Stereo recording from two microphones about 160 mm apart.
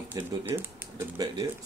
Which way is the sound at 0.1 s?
15° right (ahead or behind).